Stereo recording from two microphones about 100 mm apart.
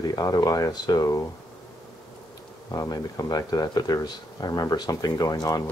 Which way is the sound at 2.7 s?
40° left (ahead or behind).